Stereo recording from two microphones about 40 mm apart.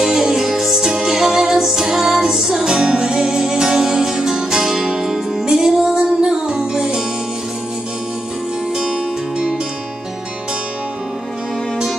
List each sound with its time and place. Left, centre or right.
0.0 s music: centre